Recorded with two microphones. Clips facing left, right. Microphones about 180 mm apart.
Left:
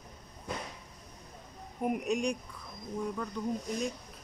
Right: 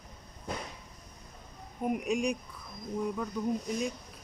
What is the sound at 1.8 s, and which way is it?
Speech, centre (ahead or behind).